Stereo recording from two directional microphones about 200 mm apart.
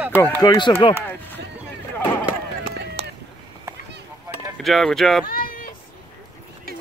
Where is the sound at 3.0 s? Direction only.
30° right (ahead or behind).